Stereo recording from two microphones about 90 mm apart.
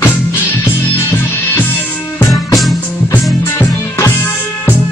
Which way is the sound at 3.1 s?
40° left (ahead or behind).